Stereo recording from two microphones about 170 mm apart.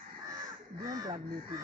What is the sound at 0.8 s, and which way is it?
Speech, 20° right (ahead or behind).